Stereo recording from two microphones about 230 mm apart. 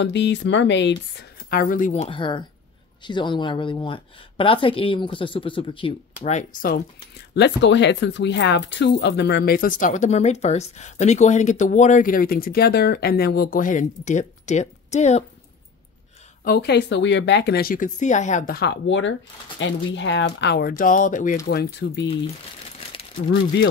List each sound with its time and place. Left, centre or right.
0.0 s speech: left
7.3 s speech: left
16.4 s speech: left
21.5 s speech: left